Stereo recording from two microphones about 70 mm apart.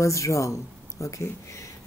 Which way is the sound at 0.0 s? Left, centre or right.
Left.